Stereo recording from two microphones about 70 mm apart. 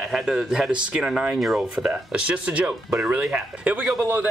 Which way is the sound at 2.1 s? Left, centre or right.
Centre.